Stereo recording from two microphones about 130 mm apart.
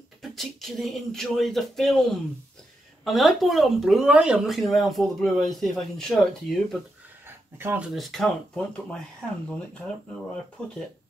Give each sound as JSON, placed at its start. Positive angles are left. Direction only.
{"t": 0.2, "sound": "speech", "side_deg": 0}
{"t": 7.2, "sound": "a sound", "side_deg": -20}
{"t": 7.9, "sound": "speech", "side_deg": 0}